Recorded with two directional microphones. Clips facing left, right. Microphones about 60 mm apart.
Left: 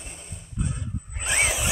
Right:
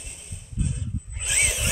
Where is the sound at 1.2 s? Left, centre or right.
Left.